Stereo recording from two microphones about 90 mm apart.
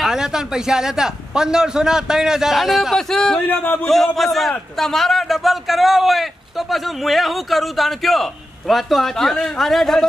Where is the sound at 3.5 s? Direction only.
20° left (ahead or behind).